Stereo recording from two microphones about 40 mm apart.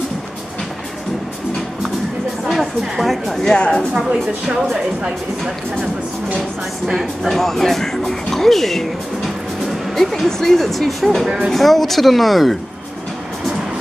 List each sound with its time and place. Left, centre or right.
2.4 s a sound: centre
3.5 s a woman's voice: left
3.9 s a woman's voice: right
6.9 s speech: centre
11.2 s speech: centre
11.5 s speech: centre